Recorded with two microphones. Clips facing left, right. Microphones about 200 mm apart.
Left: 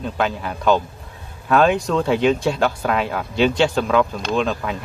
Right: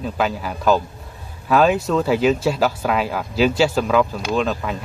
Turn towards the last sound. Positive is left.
turn(degrees=0)  # may be behind; listen again after turning